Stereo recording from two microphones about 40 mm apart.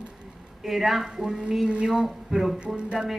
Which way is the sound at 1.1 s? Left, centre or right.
Centre.